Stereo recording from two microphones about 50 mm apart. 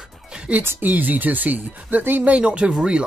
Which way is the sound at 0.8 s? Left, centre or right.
Right.